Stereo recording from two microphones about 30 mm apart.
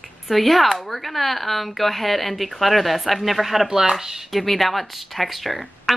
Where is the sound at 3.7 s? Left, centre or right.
Centre.